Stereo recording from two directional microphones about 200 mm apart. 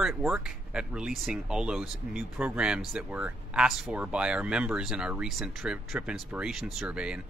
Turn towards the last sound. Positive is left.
turn(degrees=-5)  # may be behind; listen again after turning